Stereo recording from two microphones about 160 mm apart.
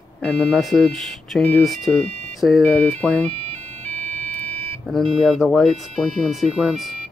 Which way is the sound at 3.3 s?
40° right (ahead or behind).